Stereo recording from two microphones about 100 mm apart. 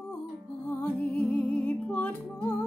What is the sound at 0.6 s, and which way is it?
Music, 15° left (ahead or behind).